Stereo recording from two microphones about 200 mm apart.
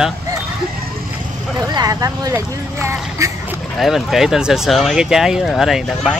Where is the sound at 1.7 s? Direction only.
20° right (ahead or behind).